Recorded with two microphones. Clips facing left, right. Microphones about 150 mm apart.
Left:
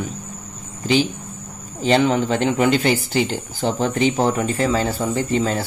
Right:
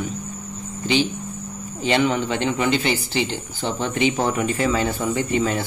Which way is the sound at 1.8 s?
35° left (ahead or behind).